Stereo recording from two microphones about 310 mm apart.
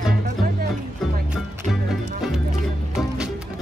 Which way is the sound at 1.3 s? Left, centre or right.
Centre.